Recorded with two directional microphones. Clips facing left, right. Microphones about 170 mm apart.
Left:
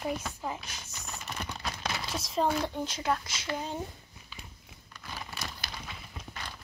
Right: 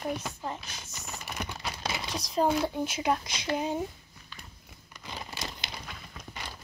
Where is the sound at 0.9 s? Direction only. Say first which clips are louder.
Right 2 dB; 10° right (ahead or behind).